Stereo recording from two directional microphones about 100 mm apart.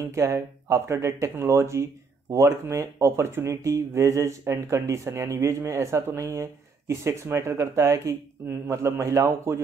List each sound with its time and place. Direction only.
0.0 s speech: 30° right (ahead or behind)